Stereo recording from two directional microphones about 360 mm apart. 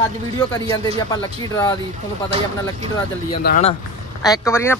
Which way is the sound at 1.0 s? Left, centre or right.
Centre.